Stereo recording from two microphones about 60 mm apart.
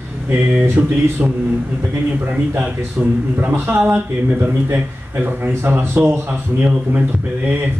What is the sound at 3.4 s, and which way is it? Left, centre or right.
Speech, right.